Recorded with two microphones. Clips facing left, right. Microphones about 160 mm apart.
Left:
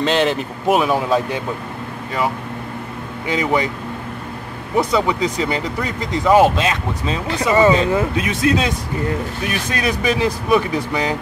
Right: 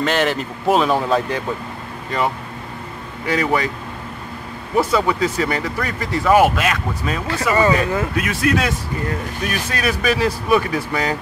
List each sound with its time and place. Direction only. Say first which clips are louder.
0.0 s speech: left 2 dB; 20° left (ahead or behind)
3.3 s speech: even; 20° left (ahead or behind)
4.7 s speech: even; 15° left (ahead or behind)